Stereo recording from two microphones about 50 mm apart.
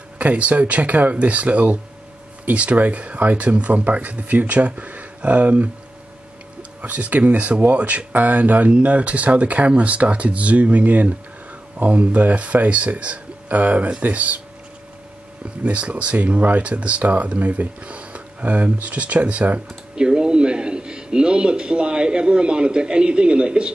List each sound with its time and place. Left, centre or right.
0.2 s speech: right
6.8 s speech: right
15.6 s a man's voice: right